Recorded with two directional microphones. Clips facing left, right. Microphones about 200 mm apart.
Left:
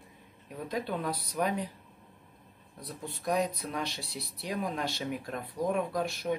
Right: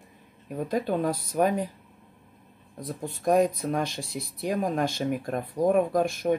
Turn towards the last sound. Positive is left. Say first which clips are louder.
# right 7 dB
turn(degrees=-50)  # may be behind; listen again after turning